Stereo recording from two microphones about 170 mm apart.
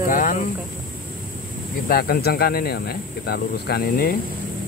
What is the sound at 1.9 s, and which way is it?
Speech, 65° left (ahead or behind).